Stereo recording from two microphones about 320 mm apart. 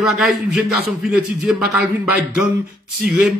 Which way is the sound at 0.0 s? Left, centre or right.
Centre.